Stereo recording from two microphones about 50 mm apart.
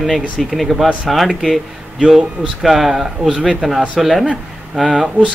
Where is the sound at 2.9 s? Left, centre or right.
Centre.